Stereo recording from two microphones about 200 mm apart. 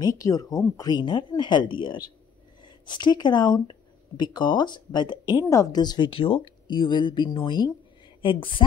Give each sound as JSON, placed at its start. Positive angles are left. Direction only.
{"t": 0.2, "sound": "a woman's voice", "side_deg": 15}